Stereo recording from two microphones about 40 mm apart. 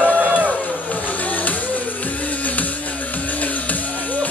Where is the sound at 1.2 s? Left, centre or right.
Left.